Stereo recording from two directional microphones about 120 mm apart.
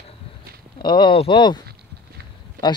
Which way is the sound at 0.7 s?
40° left (ahead or behind).